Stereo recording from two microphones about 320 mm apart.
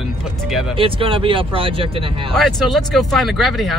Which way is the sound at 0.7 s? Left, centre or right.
Centre.